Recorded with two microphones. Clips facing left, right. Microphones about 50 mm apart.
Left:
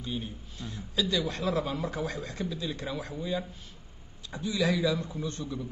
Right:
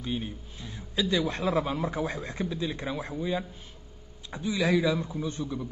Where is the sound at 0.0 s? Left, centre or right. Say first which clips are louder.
Right 3 dB; right.